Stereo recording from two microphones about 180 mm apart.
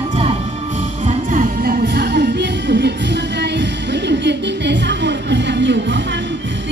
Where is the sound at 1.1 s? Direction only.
45° right (ahead or behind).